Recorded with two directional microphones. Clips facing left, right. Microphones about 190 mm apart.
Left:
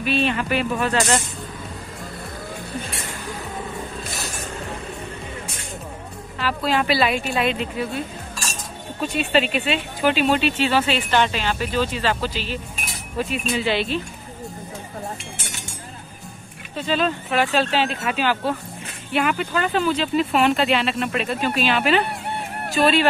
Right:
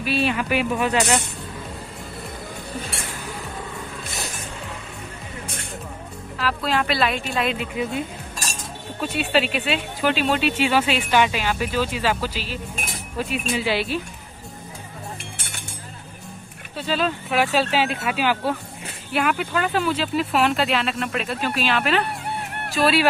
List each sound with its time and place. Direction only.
0.0 s speech: 5° right (ahead or behind)
6.3 s speech: centre (ahead or behind)
9.0 s speech: 5° right (ahead or behind)
15.3 s chink: 60° right (ahead or behind)
16.7 s speech: 5° right (ahead or behind)